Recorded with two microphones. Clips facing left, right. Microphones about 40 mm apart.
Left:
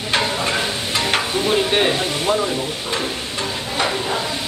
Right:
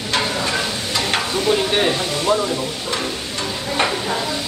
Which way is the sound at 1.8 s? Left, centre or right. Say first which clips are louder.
Even; left.